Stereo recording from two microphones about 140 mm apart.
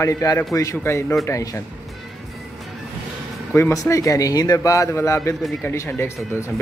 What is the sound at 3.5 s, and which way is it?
A man's voice, 20° left (ahead or behind).